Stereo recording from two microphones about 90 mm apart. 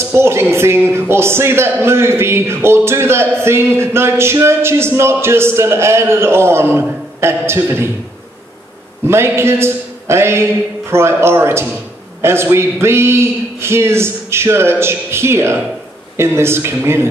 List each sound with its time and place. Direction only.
0.0 s a man's voice: 30° right (ahead or behind)
9.0 s a man's voice: 30° right (ahead or behind)